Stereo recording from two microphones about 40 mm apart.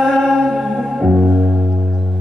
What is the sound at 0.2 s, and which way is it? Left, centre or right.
Music, centre.